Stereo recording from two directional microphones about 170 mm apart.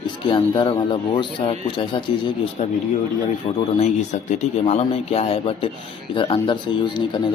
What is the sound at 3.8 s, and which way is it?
Speech, 40° left (ahead or behind).